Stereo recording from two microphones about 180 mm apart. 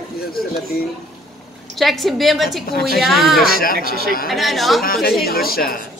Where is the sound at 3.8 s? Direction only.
60° right (ahead or behind).